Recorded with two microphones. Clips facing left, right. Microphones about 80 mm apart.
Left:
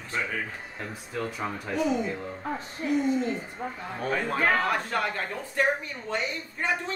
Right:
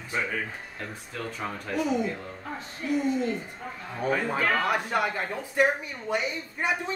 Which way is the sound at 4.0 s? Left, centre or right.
Centre.